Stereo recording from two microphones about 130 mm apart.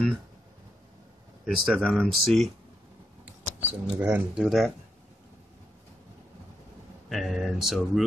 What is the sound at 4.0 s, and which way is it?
Speech, 15° right (ahead or behind).